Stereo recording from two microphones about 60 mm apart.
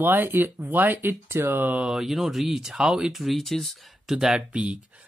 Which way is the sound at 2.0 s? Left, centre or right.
Centre.